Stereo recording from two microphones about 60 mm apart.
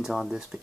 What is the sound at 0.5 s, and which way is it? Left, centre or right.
Speech, right.